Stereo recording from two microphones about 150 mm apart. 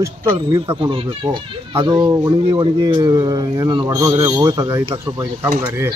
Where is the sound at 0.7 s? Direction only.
35° right (ahead or behind); by 5.5 s 15° right (ahead or behind).